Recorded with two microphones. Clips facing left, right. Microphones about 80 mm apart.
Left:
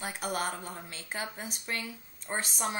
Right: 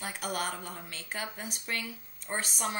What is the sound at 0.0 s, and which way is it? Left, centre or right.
A woman's voice, left.